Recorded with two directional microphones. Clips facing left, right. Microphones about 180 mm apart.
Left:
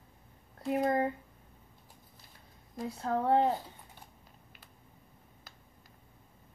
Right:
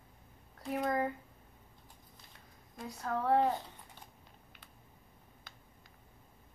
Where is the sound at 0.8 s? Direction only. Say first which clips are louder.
Left 3 dB; 30° left (ahead or behind).